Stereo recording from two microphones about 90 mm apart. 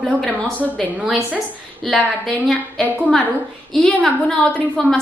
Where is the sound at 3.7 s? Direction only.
15° left (ahead or behind).